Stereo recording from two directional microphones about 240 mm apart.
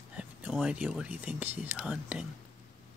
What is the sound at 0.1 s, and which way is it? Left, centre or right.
Speech, centre.